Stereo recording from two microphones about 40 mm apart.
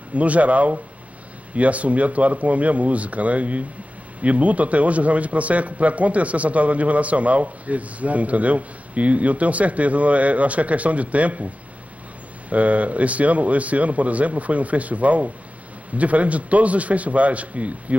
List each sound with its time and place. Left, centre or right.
0.1 s a man's voice: right
12.4 s a man's voice: right